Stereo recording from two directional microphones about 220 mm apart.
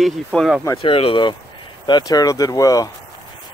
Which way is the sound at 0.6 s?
25° left (ahead or behind).